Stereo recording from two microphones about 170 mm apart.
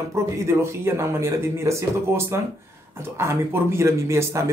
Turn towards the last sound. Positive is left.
turn(degrees=-15)  # may be behind; listen again after turning